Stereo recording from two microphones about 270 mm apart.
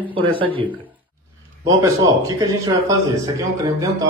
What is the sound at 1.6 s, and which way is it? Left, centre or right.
A man's voice, centre.